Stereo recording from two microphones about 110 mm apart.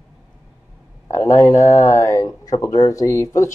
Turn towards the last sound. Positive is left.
turn(degrees=30)  # may be behind; listen again after turning